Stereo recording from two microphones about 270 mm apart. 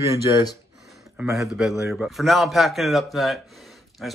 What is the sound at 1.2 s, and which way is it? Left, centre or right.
Speech, centre.